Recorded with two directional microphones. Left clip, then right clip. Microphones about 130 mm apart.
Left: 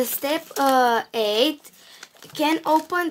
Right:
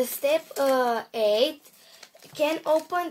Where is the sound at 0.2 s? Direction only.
70° left (ahead or behind).